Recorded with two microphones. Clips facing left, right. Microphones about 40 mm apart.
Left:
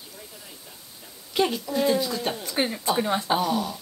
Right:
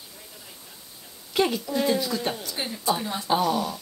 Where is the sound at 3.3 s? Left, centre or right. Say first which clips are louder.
Right 1 dB; centre.